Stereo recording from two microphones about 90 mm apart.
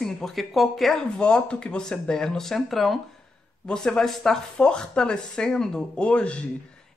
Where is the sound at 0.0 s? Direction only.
5° left (ahead or behind).